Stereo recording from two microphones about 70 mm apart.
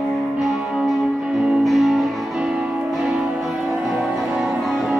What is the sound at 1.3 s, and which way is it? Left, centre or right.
Music, centre.